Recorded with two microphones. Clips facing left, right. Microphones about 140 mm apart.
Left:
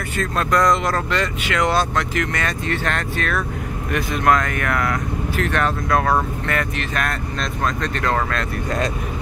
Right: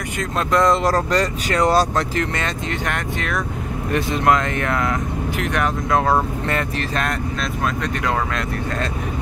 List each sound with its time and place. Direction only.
0.2 s speech: 25° right (ahead or behind)
7.8 s speech: 15° right (ahead or behind)